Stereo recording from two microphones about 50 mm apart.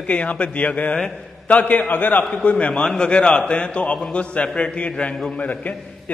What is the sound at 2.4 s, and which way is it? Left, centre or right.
A man's voice, left.